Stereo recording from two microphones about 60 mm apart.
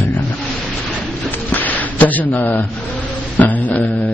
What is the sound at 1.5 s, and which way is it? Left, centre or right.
A man's voice, left.